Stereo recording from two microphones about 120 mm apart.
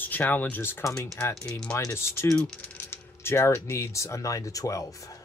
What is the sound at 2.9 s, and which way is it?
Speech, 20° left (ahead or behind).